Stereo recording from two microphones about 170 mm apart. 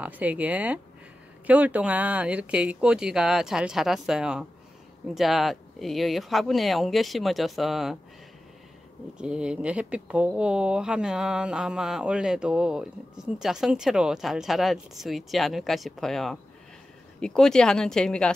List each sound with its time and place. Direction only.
0.0 s speech: 10° right (ahead or behind)
9.2 s speech: 5° right (ahead or behind)